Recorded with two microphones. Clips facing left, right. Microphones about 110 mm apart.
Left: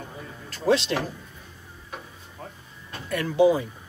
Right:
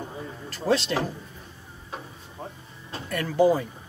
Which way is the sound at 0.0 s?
20° right (ahead or behind).